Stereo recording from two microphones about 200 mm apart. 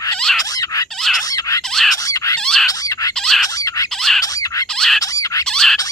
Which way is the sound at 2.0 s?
15° left (ahead or behind).